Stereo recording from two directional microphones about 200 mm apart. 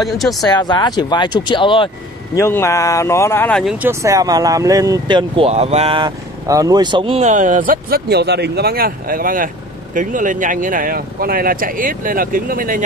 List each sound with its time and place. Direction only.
0.1 s speech: centre (ahead or behind)
0.5 s speech: 20° left (ahead or behind)
2.3 s speech: 15° left (ahead or behind)
3.7 s speech: 10° right (ahead or behind); by 12.8 s 45° right (ahead or behind)